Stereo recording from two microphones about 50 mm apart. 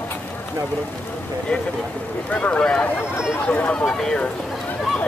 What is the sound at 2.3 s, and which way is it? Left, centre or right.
Speech, left.